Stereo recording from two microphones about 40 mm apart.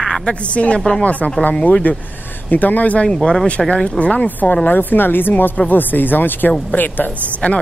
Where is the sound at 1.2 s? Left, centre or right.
Left.